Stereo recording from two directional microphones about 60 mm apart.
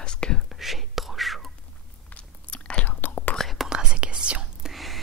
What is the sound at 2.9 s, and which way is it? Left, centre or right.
Whispering, left.